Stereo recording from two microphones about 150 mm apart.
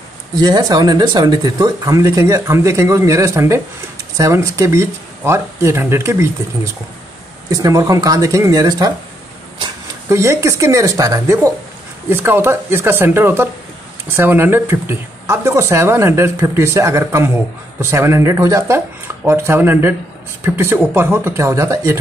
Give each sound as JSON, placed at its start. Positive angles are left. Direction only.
{"t": 0.4, "sound": "speech", "side_deg": -25}
{"t": 10.0, "sound": "speech", "side_deg": -20}